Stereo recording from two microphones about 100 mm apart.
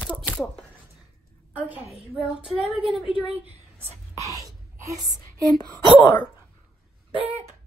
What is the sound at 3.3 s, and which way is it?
Speech, 75° right (ahead or behind).